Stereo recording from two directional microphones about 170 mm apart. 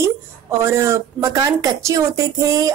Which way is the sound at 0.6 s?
15° right (ahead or behind).